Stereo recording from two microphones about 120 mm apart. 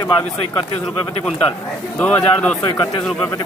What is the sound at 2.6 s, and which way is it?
Speech, 35° left (ahead or behind).